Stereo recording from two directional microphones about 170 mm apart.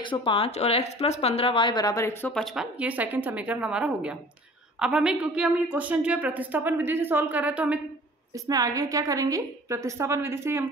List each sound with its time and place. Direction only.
0.0 s speech: 30° left (ahead or behind)
2.3 s a woman's voice: centre (ahead or behind)
8.5 s a woman's voice: 20° right (ahead or behind)